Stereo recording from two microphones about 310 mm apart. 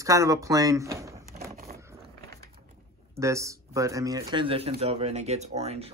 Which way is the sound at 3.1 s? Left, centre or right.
Centre.